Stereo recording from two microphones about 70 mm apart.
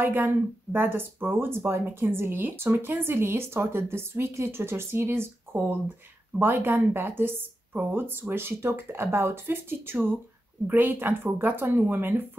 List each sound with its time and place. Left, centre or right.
0.0 s speech: right